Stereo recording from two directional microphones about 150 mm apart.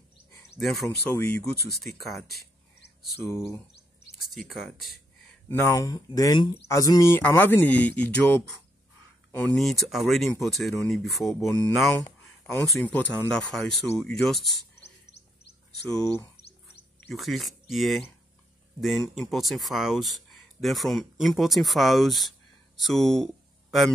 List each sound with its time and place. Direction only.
0.6 s speech: centre (ahead or behind)
1.1 s speech: 15° left (ahead or behind)
1.8 s speech: centre (ahead or behind)
3.2 s speech: 15° left (ahead or behind)
4.2 s speech: centre (ahead or behind)
5.5 s speech: 20° left (ahead or behind)
9.6 s speech: centre (ahead or behind)
12.0 s a sound: 15° left (ahead or behind)
12.9 s speech: 10° left (ahead or behind)
15.9 s speech: 5° left (ahead or behind)